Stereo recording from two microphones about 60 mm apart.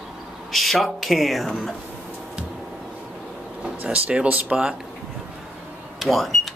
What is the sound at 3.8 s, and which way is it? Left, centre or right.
Speech, centre.